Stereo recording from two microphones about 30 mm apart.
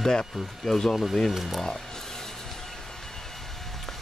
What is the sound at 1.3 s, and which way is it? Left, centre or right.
Speech, centre.